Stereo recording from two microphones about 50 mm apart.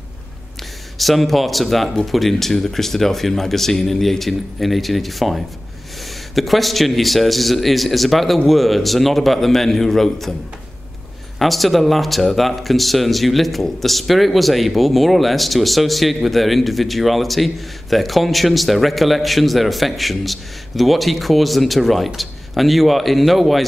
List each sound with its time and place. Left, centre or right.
0.9 s speech: centre
11.3 s speech: centre